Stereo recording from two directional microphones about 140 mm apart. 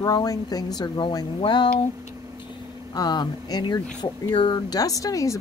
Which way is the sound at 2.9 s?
30° left (ahead or behind).